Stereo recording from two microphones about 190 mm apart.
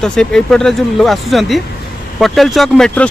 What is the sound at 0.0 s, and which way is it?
Speech, 5° left (ahead or behind).